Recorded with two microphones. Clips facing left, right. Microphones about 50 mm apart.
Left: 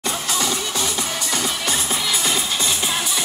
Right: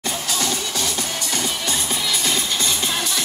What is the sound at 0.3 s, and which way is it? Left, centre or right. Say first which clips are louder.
Music: left 1 dB; centre.